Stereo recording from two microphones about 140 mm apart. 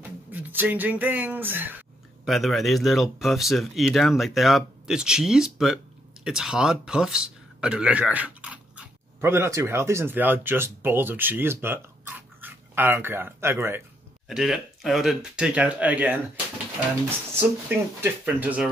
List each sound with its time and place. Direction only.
0.3 s speech: 10° right (ahead or behind)
2.2 s speech: centre (ahead or behind)
9.3 s speech: 20° right (ahead or behind)
14.2 s speech: 5° right (ahead or behind)
17.6 s speech: 10° right (ahead or behind)